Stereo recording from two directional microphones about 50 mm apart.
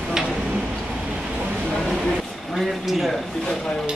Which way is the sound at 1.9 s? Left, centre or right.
Centre.